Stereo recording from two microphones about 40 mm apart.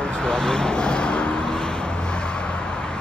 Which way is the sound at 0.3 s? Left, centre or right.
Centre.